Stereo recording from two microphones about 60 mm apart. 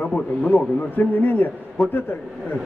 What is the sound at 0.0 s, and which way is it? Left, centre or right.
A man's voice, left.